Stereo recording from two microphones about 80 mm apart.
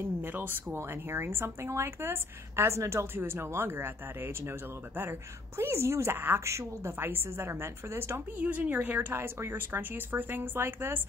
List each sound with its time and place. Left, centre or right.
0.0 s a woman's voice: right
8.4 s speech: centre